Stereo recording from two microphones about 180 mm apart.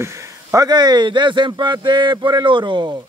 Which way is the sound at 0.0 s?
15° right (ahead or behind).